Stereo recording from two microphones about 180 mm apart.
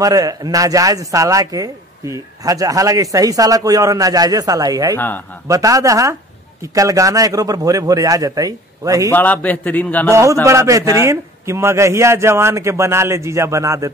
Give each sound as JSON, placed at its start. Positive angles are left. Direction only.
{"t": 0.0, "sound": "speech", "side_deg": -20}
{"t": 4.9, "sound": "a man's voice", "side_deg": 10}
{"t": 5.5, "sound": "a man's voice", "side_deg": -20}
{"t": 9.1, "sound": "a man's voice", "side_deg": 10}
{"t": 10.4, "sound": "a man's voice", "side_deg": -15}